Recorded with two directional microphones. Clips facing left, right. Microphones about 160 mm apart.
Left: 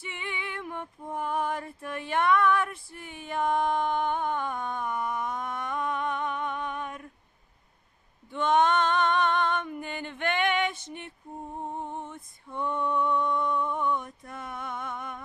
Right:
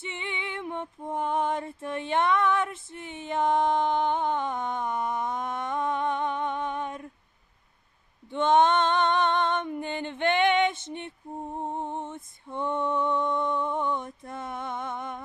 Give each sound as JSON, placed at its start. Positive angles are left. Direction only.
{"t": 0.0, "sound": "music", "side_deg": -25}
{"t": 8.3, "sound": "female singing", "side_deg": -25}
{"t": 11.6, "sound": "music", "side_deg": -25}